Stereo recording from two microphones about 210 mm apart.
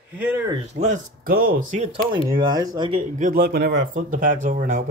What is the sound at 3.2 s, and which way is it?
Speech, 45° right (ahead or behind).